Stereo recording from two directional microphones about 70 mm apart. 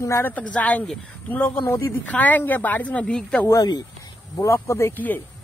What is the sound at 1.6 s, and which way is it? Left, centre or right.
Speech, left.